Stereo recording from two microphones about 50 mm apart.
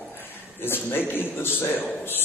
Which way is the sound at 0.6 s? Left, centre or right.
Left.